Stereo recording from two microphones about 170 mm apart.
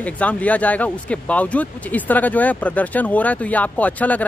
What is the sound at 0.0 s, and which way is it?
Speech, 10° left (ahead or behind).